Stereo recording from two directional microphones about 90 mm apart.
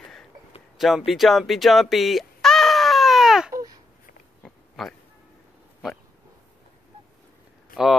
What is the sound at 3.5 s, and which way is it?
Babbling, 40° right (ahead or behind).